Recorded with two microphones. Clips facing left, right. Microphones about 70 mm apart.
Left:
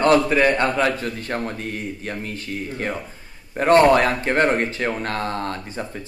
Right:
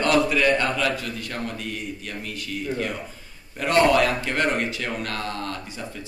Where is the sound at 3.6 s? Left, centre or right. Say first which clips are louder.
Left 5 dB; left.